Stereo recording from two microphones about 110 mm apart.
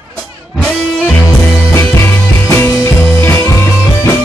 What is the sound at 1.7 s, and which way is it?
Music, 25° left (ahead or behind).